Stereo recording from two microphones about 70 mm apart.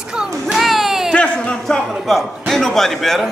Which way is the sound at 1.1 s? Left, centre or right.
Centre.